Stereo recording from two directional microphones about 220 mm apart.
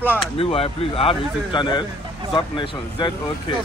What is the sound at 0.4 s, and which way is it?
Speech, 25° left (ahead or behind).